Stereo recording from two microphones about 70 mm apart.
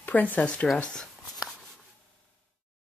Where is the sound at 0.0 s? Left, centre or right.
Left.